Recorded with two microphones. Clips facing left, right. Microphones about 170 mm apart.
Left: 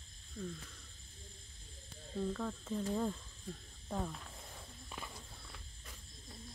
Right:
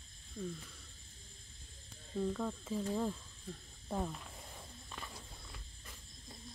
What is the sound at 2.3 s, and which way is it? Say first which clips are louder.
Speech: right 1 dB; 5° right (ahead or behind).